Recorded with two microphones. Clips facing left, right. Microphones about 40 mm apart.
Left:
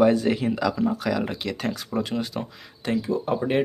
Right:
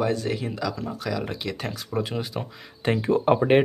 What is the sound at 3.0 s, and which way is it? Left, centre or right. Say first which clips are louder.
Speech: right 6 dB; right.